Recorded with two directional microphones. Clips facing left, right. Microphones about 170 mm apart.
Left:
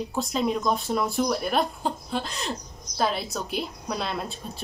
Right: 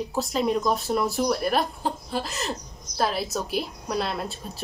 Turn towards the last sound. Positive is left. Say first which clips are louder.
# right 2 dB
turn(degrees=0)  # may be behind; listen again after turning